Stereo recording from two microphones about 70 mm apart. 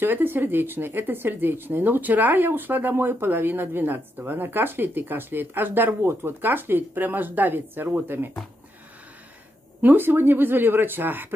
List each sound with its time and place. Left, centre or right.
0.0 s speech: right
9.8 s speech: right